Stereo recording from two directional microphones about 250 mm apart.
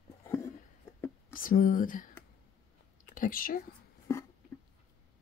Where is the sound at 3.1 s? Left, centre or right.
Left.